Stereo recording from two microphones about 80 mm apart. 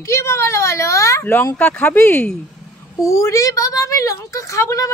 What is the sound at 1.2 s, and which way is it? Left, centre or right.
Speech, left.